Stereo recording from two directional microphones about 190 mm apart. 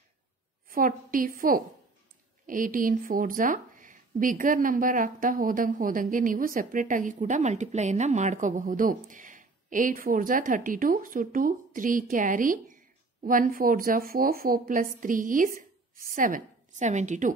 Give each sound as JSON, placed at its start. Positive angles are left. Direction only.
{"t": 0.7, "sound": "a woman's voice", "side_deg": -45}